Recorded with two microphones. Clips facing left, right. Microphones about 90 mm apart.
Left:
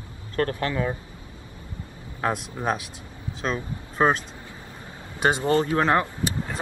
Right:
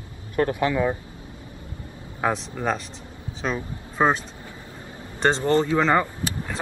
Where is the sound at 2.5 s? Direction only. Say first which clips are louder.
Right 1 dB; 10° left (ahead or behind).